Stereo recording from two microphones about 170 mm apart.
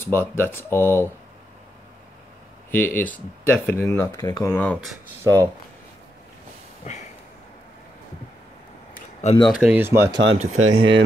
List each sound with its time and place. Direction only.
0.0 s speech: 15° left (ahead or behind)
2.7 s speech: 10° left (ahead or behind)
5.2 s speech: 15° right (ahead or behind)
9.5 s speech: 5° right (ahead or behind)
10.3 s speech: 40° right (ahead or behind)
10.7 s speech: 30° right (ahead or behind)